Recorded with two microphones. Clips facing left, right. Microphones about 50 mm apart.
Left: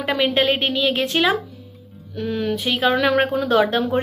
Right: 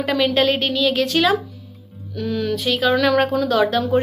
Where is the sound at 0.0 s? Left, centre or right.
Left.